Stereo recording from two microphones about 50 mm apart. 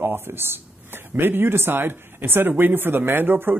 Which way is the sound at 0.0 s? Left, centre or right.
Right.